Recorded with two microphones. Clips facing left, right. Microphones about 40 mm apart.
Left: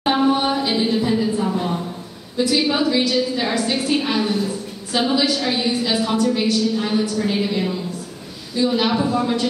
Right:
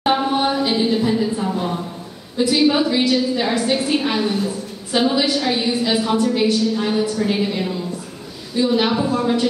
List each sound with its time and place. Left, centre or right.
0.0 s a sound: centre
2.3 s a woman's voice: centre
5.1 s a woman's voice: centre
5.4 s a woman's voice: centre